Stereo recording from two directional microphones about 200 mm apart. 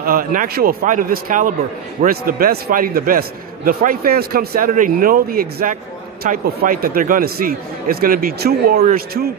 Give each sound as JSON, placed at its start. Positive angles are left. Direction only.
{"t": 0.0, "sound": "a man's voice", "side_deg": -45}